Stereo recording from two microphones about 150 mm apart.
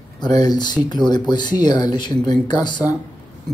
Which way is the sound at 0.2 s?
25° left (ahead or behind).